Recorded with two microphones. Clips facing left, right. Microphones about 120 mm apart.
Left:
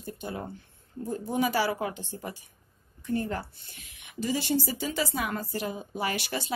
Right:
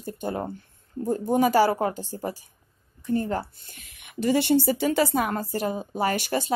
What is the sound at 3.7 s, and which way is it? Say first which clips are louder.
A woman's voice: right 2 dB; 55° right (ahead or behind).